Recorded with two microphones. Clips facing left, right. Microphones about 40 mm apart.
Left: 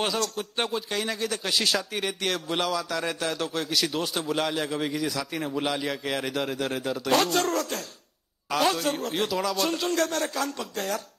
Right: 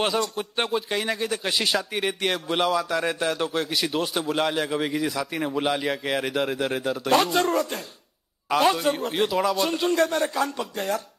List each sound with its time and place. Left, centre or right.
0.0 s a man's voice: centre